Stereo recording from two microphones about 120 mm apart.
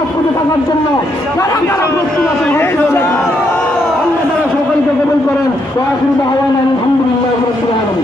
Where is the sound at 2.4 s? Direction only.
20° left (ahead or behind).